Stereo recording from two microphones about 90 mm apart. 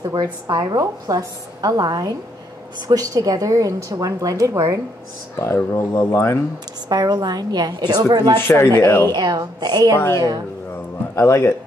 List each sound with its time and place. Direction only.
0.5 s a woman's voice: 45° right (ahead or behind)
5.3 s speech: 30° left (ahead or behind)
6.9 s a woman's voice: 50° right (ahead or behind)
8.4 s speech: 25° left (ahead or behind)
9.1 s a woman's voice: 50° right (ahead or behind)
11.1 s speech: 30° left (ahead or behind)